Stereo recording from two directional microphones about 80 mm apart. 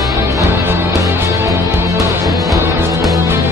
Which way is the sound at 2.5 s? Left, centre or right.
Right.